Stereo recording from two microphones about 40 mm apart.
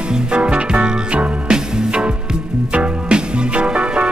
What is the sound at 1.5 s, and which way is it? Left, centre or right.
Music, centre.